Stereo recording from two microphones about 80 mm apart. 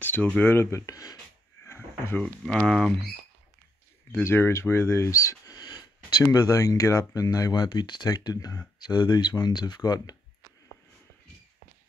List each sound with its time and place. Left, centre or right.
0.0 s a sound: left
0.4 s speech: left
1.7 s drawer open or close: left
2.4 s speech: centre
4.2 s speech: left
6.3 s speech: left